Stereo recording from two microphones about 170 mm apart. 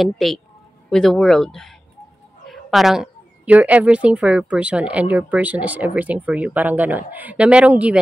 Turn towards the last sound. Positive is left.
turn(degrees=-5)  # may be behind; listen again after turning